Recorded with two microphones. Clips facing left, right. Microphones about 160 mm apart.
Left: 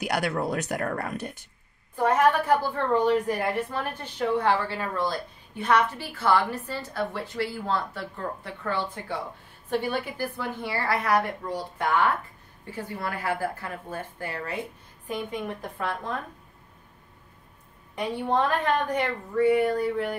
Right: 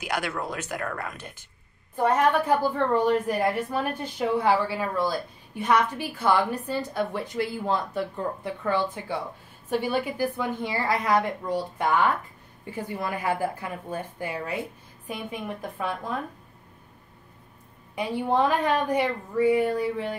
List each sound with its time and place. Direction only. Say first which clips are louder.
0.2 s speech: left 4 dB; 35° left (ahead or behind)
2.0 s a woman's voice: even; 15° right (ahead or behind)
17.9 s a woman's voice: right 1 dB; 10° right (ahead or behind)